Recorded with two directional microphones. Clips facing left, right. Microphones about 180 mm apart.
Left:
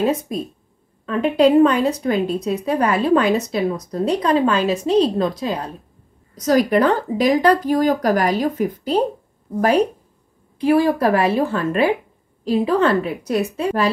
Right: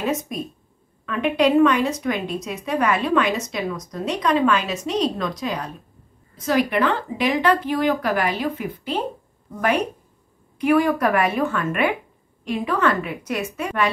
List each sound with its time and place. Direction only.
0.0 s speech: 30° left (ahead or behind)